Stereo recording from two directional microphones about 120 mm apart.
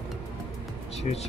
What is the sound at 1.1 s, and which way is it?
Speech, 90° left.